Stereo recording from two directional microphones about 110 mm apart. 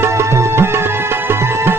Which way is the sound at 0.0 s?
25° right (ahead or behind).